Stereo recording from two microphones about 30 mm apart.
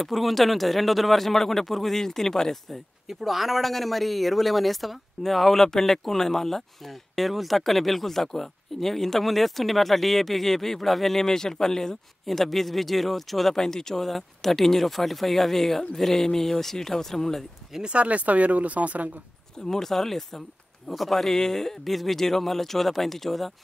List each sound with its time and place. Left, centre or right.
0.0 s a man's voice: centre
3.1 s a man's voice: centre
6.9 s speech: centre
11.2 s a man's voice: centre
12.3 s speech: centre
13.7 s a man's voice: centre
17.8 s speech: right
19.6 s a man's voice: centre